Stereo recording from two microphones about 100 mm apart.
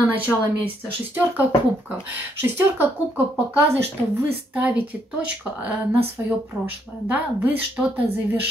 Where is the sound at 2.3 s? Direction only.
20° right (ahead or behind).